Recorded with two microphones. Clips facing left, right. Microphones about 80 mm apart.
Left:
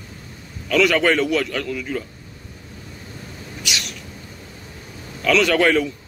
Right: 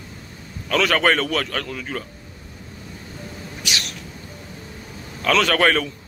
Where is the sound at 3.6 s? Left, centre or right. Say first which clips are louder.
Even; right.